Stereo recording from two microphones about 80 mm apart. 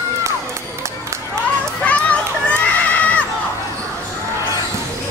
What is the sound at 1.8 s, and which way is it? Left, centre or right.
Crowd, centre.